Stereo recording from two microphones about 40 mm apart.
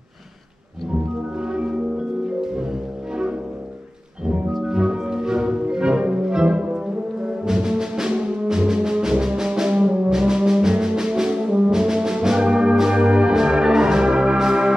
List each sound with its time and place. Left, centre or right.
1.4 s music: right
4.6 s music: centre
7.2 s brass instrument: centre
8.5 s music: centre
9.7 s music: right
10.0 s brass instrument: centre